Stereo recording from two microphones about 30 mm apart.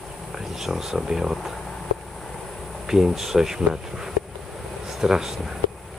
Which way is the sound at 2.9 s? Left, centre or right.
Centre.